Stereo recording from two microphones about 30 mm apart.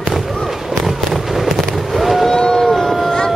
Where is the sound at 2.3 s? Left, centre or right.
Centre.